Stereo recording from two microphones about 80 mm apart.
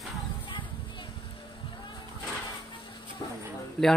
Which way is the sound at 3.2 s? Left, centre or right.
Left.